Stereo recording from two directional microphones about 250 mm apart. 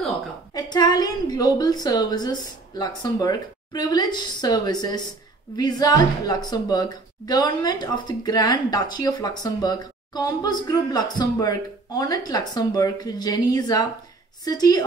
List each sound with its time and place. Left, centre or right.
0.6 s a woman's voice: centre